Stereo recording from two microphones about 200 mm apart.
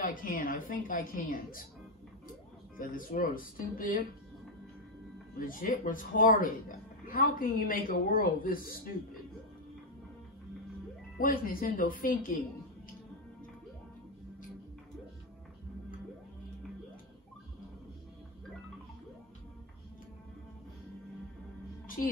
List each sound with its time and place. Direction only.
0.0 s a woman's voice: 45° left (ahead or behind)
2.8 s a woman's voice: 45° left (ahead or behind)
5.4 s a woman's voice: 45° left (ahead or behind)
11.1 s a woman's voice: 45° left (ahead or behind)
21.8 s music: 45° left (ahead or behind)